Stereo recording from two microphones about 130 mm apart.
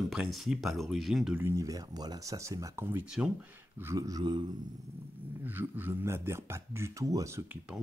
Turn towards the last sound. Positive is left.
turn(degrees=-25)  # may be behind; listen again after turning